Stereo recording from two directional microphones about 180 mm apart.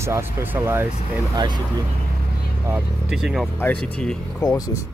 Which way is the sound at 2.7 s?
5° right (ahead or behind).